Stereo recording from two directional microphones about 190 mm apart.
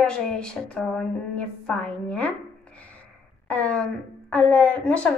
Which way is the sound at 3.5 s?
5° left (ahead or behind).